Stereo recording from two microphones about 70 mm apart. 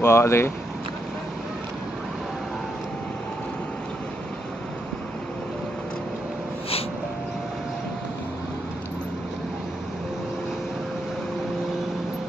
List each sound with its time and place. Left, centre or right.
0.0 s speech: left